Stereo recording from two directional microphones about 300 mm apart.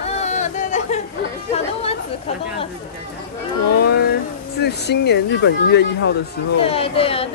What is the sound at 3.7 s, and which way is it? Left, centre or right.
Speech, left.